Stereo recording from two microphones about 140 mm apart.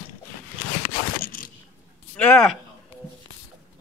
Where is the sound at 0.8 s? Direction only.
85° left.